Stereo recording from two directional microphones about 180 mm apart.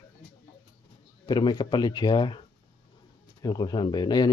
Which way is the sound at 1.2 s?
25° left (ahead or behind).